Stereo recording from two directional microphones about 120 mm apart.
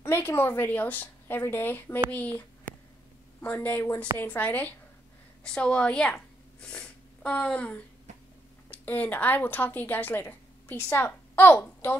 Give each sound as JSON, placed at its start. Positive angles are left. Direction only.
{"t": 0.0, "sound": "speech", "side_deg": 20}
{"t": 3.4, "sound": "speech", "side_deg": 15}